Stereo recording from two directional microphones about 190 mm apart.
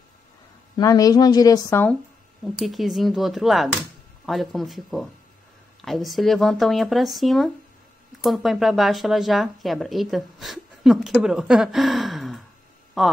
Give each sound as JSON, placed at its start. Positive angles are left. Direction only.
{"t": 0.7, "sound": "a woman's voice", "side_deg": 20}
{"t": 2.4, "sound": "speech", "side_deg": 0}